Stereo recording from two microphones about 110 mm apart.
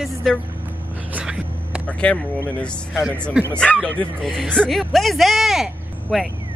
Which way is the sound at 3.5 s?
10° left (ahead or behind).